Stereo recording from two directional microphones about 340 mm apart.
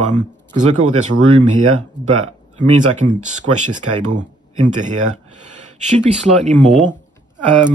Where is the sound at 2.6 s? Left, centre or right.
Right.